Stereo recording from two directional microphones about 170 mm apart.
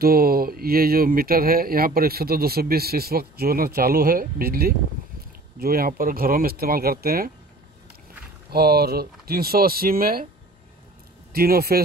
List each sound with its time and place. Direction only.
0.0 s speech: 60° right (ahead or behind)
8.5 s speech: 70° right (ahead or behind)
11.3 s speech: 65° right (ahead or behind)